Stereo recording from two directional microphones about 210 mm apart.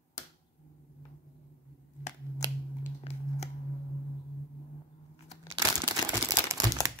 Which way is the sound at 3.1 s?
30° left (ahead or behind).